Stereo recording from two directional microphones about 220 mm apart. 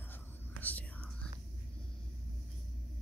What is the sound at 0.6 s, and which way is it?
Whispering, 5° left (ahead or behind).